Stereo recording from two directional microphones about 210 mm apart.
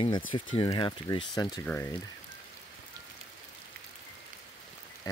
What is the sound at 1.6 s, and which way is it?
Speech, 10° left (ahead or behind).